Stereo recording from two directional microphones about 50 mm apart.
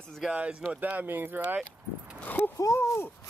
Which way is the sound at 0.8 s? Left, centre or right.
Right.